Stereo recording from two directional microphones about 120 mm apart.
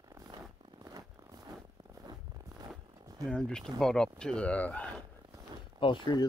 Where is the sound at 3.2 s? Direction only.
5° left (ahead or behind).